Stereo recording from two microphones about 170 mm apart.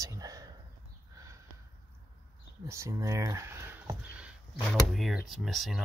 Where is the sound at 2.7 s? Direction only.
15° right (ahead or behind); by 5.8 s centre (ahead or behind).